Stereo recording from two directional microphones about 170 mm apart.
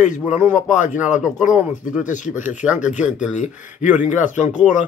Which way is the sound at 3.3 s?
45° left (ahead or behind).